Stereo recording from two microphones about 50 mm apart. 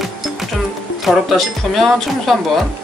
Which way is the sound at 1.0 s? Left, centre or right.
Centre.